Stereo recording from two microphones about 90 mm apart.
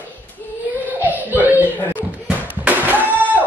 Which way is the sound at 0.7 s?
20° right (ahead or behind).